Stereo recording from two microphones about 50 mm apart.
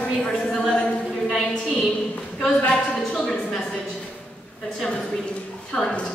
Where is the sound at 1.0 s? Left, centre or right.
Centre.